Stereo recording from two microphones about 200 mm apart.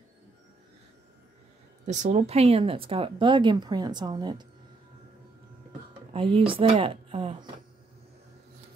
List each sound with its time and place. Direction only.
1.9 s speech: 35° right (ahead or behind)
6.1 s speech: 25° right (ahead or behind)